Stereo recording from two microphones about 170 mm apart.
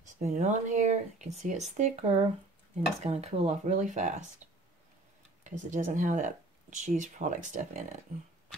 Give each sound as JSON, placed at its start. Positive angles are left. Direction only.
{"t": 0.2, "sound": "speech", "side_deg": -45}
{"t": 5.4, "sound": "speech", "side_deg": -45}